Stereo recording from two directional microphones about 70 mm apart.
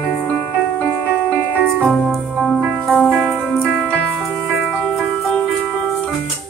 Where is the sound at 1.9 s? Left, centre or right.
Centre.